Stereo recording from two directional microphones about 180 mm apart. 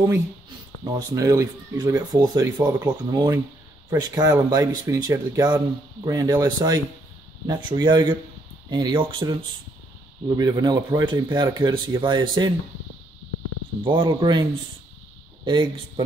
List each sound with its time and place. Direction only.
0.8 s speech: 20° right (ahead or behind)
13.7 s speech: 25° right (ahead or behind)